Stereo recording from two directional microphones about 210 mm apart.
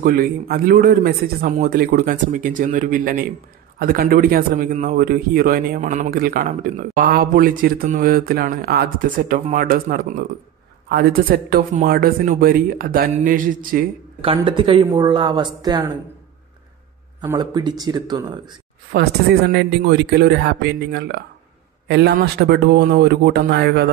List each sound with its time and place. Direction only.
0.0 s speech: 45° right (ahead or behind)
14.2 s speech: 25° right (ahead or behind)
17.2 s speech: 15° right (ahead or behind)
18.9 s speech: 50° right (ahead or behind)